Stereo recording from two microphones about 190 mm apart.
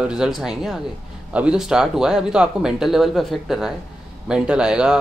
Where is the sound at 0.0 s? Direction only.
5° right (ahead or behind).